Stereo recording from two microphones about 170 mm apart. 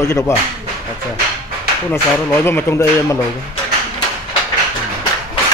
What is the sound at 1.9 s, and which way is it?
Speech, 15° left (ahead or behind).